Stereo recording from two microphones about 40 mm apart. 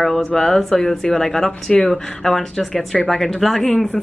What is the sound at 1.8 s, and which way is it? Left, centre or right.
Speech, centre.